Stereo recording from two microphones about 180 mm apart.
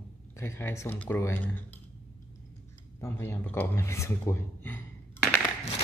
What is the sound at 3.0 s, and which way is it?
A man's voice, 15° left (ahead or behind).